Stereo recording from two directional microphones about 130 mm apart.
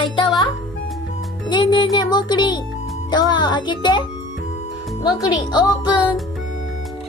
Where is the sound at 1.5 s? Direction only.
35° left (ahead or behind).